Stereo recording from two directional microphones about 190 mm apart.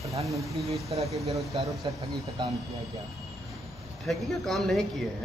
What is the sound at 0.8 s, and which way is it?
Speech, 35° right (ahead or behind).